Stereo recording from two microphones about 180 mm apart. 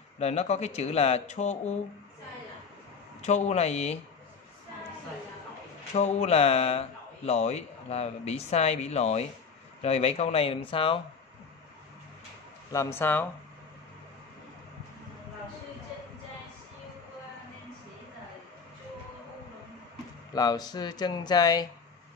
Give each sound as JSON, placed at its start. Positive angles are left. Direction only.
{"t": 0.2, "sound": "speech", "side_deg": 35}
{"t": 3.2, "sound": "speech", "side_deg": 40}
{"t": 5.9, "sound": "speech", "side_deg": 35}
{"t": 12.7, "sound": "speech", "side_deg": 10}
{"t": 20.3, "sound": "speech", "side_deg": 20}